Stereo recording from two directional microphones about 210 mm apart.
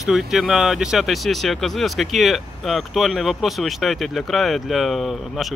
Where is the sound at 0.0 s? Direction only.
Centre (ahead or behind).